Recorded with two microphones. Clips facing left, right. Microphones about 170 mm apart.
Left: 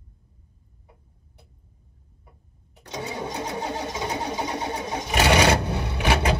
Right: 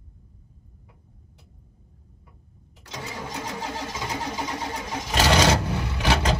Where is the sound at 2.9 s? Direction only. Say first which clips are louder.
Left 4 dB; 65° left (ahead or behind).